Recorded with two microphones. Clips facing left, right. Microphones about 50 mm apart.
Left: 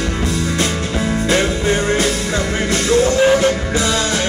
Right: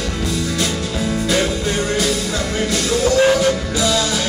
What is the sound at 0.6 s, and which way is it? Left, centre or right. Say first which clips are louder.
Music: left 2 dB; left.